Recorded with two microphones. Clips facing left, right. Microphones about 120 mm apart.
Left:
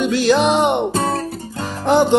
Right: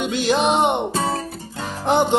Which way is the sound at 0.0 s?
20° right (ahead or behind).